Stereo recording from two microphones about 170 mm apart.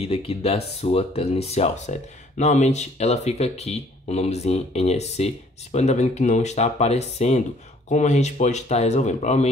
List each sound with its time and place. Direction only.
0.0 s speech: 35° left (ahead or behind)